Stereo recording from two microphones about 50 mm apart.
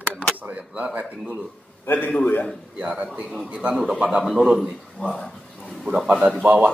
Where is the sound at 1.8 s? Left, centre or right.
Left.